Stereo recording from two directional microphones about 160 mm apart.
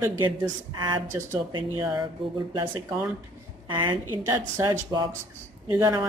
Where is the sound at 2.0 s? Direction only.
30° right (ahead or behind).